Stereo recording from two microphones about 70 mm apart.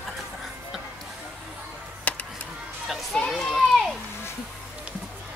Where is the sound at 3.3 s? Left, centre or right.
Centre.